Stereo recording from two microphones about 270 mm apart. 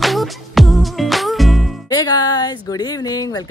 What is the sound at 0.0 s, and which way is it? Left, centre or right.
Music, centre.